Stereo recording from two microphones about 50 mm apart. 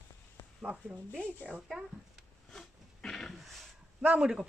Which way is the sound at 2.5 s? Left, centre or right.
Centre.